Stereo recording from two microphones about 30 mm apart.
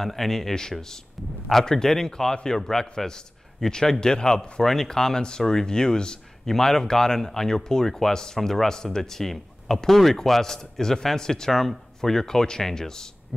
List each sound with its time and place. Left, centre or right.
0.0 s speech: centre
0.6 s speech: centre
4.6 s speech: centre
8.6 s speech: centre
10.4 s speech: centre